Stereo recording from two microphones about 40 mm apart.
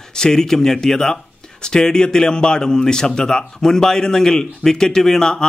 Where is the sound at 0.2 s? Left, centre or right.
Centre.